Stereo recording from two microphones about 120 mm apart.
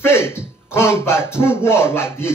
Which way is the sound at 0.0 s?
20° left (ahead or behind).